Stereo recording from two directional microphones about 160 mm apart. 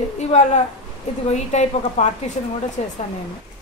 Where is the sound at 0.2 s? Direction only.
45° left (ahead or behind).